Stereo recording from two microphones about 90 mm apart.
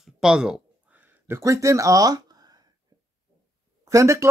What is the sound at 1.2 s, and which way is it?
Speech, 30° right (ahead or behind).